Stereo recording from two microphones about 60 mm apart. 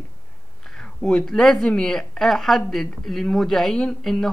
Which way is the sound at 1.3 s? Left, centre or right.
Centre.